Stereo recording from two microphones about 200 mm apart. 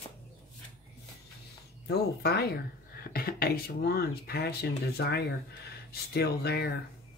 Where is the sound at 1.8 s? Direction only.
55° left (ahead or behind).